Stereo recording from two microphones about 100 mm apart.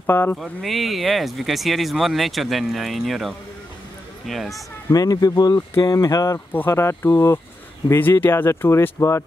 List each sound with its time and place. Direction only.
0.0 s speech: 20° left (ahead or behind)
0.4 s speech: centre (ahead or behind)
4.9 s speech: 35° left (ahead or behind)
6.5 s speech: 25° left (ahead or behind)